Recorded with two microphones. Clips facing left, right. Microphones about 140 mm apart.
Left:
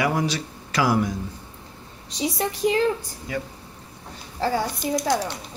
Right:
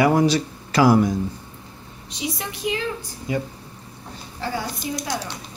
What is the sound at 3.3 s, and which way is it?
Speech, 20° right (ahead or behind).